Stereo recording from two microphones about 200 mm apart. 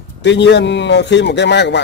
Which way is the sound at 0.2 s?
60° left (ahead or behind).